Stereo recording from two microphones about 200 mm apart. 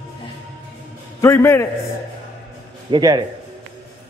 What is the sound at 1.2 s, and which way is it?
Speech, 15° left (ahead or behind).